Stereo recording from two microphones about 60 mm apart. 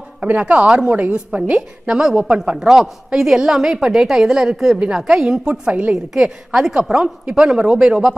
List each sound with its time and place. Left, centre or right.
0.2 s a woman's voice: right
1.9 s a woman's voice: centre